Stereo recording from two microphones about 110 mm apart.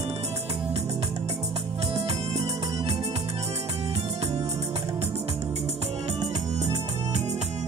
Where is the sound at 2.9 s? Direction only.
70° right (ahead or behind).